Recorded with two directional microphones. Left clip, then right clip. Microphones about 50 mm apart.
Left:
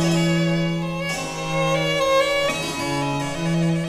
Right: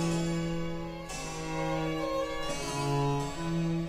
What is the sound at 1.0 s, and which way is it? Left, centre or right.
Violin, right.